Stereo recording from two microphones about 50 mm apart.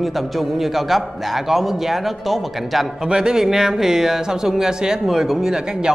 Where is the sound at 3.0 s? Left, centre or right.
Centre.